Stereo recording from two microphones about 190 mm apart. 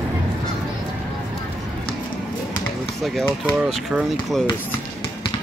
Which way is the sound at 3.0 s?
Centre (ahead or behind).